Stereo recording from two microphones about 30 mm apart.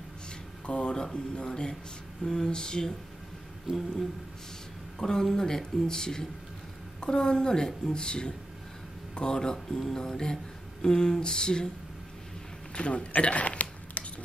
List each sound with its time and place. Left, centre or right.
0.7 s speech: left
3.7 s a sound: right
4.9 s speech: centre
9.3 s speech: left
12.7 s a man's voice: left
13.2 s a sound: left